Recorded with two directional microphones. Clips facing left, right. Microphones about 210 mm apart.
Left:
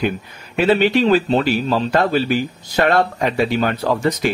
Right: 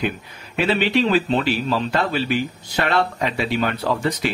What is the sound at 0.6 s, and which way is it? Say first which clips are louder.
A man's voice: left 5 dB; 45° left (ahead or behind).